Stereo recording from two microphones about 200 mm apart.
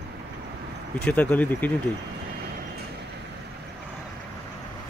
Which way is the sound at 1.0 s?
10° left (ahead or behind).